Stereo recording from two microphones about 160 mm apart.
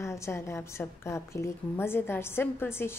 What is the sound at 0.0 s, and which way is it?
A woman's voice, 15° left (ahead or behind).